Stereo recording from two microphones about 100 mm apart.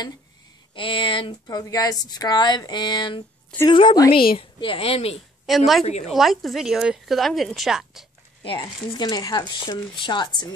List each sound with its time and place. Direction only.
0.7 s speech: 60° left (ahead or behind)
1.5 s a woman's voice: 40° left (ahead or behind); by 5.1 s 75° left (ahead or behind)
5.5 s a woman's voice: centre (ahead or behind)
8.5 s speech: 40° left (ahead or behind)